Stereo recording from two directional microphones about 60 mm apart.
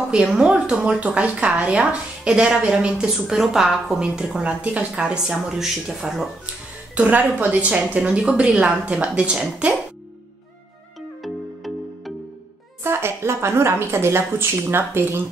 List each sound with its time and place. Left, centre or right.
0.1 s speech: centre
0.4 s speech: centre
7.0 s speech: right
12.8 s a woman's voice: right